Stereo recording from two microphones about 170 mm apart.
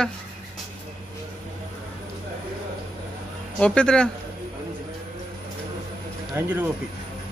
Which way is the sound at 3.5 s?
5° left (ahead or behind).